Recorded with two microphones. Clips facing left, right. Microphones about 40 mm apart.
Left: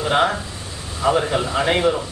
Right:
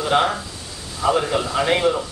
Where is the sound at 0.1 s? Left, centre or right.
Centre.